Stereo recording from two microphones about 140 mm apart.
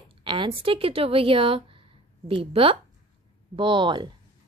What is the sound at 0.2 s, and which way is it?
A woman's voice, 35° right (ahead or behind).